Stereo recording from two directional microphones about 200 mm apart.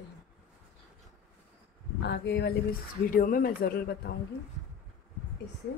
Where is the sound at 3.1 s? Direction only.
45° left (ahead or behind).